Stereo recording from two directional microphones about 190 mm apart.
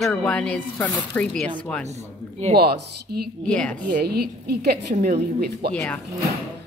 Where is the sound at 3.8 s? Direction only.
50° right (ahead or behind).